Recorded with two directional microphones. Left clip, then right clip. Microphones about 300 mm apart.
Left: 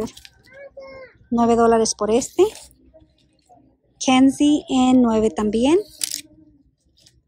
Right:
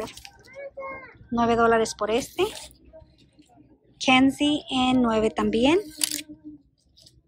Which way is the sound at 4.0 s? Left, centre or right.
Centre.